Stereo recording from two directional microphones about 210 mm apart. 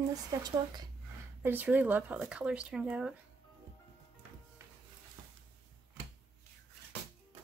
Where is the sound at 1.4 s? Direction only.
10° right (ahead or behind).